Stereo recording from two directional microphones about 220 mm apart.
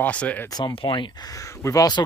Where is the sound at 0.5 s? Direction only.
20° left (ahead or behind).